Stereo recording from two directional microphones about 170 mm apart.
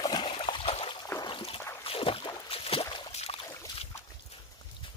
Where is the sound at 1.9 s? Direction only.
30° left (ahead or behind).